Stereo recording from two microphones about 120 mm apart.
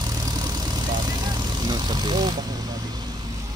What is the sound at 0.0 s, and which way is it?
Vehicle, 30° right (ahead or behind).